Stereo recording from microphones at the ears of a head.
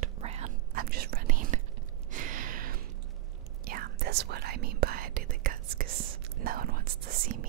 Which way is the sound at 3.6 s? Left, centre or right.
Right.